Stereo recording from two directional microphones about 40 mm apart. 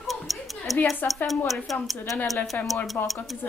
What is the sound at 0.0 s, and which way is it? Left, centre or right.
Tick-tock, centre.